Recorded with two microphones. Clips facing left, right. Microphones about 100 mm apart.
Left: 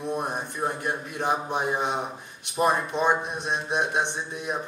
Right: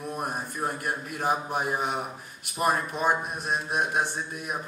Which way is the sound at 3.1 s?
25° left (ahead or behind).